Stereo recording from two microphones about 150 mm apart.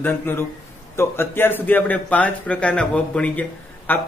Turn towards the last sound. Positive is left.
turn(degrees=10)  # may be behind; listen again after turning